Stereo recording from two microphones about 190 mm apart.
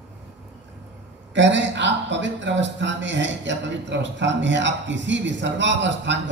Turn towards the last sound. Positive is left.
turn(degrees=-70)  # may be behind; listen again after turning